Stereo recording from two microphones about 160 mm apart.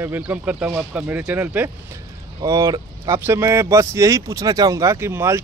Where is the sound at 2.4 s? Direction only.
20° right (ahead or behind).